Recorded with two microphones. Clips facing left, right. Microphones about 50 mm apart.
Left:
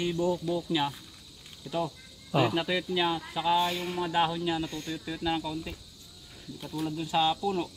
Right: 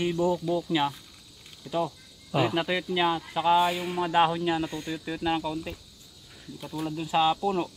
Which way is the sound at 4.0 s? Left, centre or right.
Right.